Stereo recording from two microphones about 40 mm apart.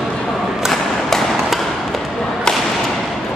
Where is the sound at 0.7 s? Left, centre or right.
Centre.